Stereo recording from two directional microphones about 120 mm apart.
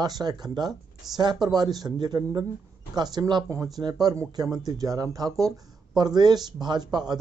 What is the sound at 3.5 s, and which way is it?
Speech, 25° right (ahead or behind).